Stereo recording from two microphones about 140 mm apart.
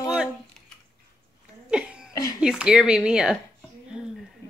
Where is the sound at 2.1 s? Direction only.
25° left (ahead or behind).